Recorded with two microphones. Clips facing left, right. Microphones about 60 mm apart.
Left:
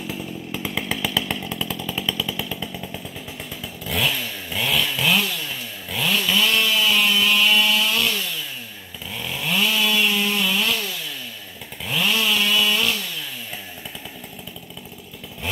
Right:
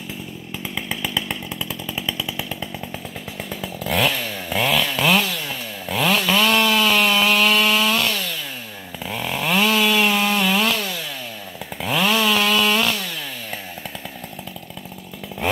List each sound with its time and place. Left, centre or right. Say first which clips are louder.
0.5 s chainsaw: left 1 dB; centre
1.7 s chainsaw: left 1 dB; centre
3.8 s chainsaw: right 3 dB; right
9.0 s chainsaw: right 5 dB; right
11.8 s chainsaw: right 4 dB; right